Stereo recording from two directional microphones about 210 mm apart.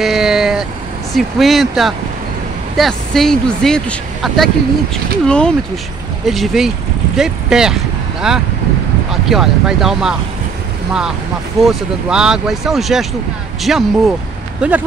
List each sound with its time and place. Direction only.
0.0 s vehicle: centre (ahead or behind)
1.1 s speech: centre (ahead or behind)